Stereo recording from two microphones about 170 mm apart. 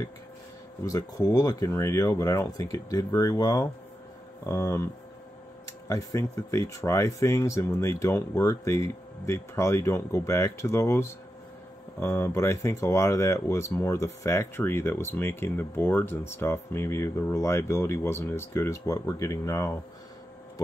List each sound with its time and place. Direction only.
0.8 s speech: 20° left (ahead or behind)
5.9 s speech: 20° left (ahead or behind)